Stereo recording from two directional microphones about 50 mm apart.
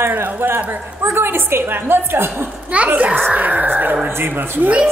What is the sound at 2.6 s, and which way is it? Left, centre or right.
A woman's voice, right.